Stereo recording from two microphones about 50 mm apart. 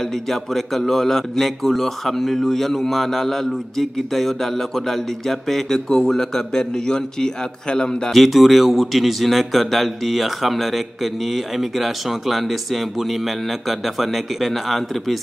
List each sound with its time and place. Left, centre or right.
0.3 s a man's voice: centre
8.1 s a man's voice: centre